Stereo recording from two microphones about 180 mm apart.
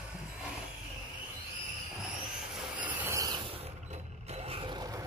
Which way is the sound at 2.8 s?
10° right (ahead or behind).